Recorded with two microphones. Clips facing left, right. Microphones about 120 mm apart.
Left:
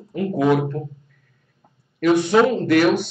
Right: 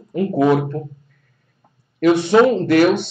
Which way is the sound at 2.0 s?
30° right (ahead or behind).